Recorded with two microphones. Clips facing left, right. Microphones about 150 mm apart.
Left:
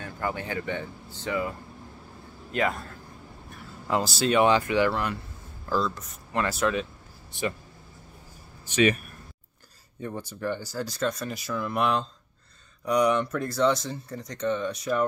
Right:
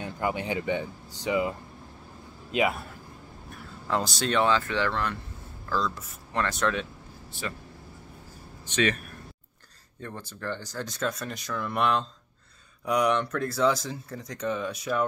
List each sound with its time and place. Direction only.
0.0 s speech: 15° right (ahead or behind)
2.5 s speech: 10° right (ahead or behind)
3.8 s speech: 5° left (ahead or behind)
8.6 s speech: 10° left (ahead or behind)